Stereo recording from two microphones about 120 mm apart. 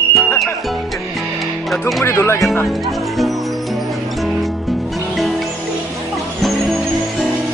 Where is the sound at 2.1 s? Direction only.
20° left (ahead or behind).